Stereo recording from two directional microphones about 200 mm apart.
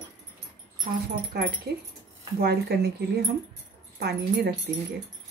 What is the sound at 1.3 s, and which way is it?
Speech, 50° right (ahead or behind).